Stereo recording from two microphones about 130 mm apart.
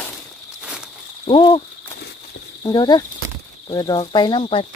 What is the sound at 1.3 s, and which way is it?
Speech, 35° left (ahead or behind).